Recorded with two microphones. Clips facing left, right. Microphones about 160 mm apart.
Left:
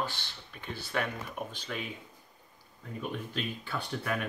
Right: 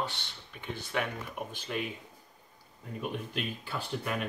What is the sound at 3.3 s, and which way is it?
Speech, 10° right (ahead or behind).